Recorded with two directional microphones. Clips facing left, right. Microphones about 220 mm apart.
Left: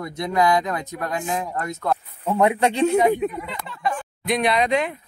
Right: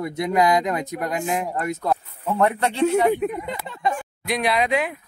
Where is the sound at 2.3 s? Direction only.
15° left (ahead or behind).